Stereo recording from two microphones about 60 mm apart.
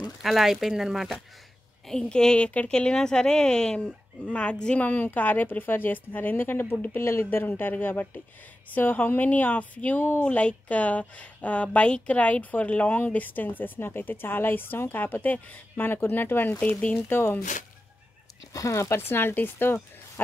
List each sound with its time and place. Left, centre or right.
0.2 s speech: centre
1.9 s a woman's voice: centre
4.8 s a woman's voice: left
16.1 s a woman's voice: left
18.5 s speech: left
18.9 s a woman's voice: left